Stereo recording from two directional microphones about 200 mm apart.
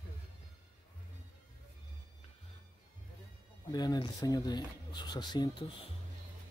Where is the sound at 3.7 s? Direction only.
20° left (ahead or behind).